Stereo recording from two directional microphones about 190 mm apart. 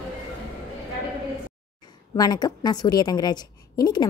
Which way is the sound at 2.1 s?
20° left (ahead or behind).